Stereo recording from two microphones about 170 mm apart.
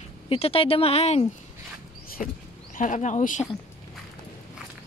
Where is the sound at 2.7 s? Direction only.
45° left (ahead or behind).